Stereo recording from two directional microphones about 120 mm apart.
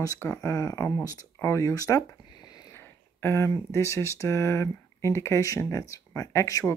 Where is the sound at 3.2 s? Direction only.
25° left (ahead or behind).